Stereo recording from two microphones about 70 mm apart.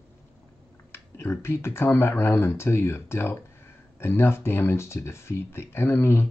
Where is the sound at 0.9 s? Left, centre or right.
Left.